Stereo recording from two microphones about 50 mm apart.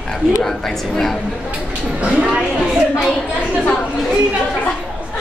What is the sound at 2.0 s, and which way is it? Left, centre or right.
Speech, right.